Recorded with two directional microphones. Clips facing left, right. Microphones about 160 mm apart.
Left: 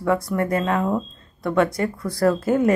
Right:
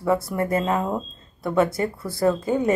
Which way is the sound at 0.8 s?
5° right (ahead or behind).